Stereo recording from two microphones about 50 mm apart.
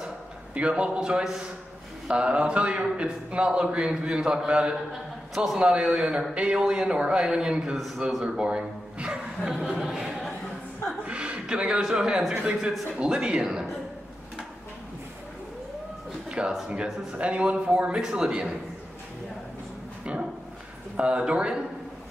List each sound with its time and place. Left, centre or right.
0.6 s a man's voice: right
5.3 s a man's voice: centre
5.6 s a man's voice: centre
7.7 s speech: centre
8.2 s a man's voice: centre
9.6 s speech: centre
11.1 s chuckle: right
11.9 s a man's voice: centre
16.3 s a sound: right
16.6 s a man's voice: right
20.9 s a man's voice: right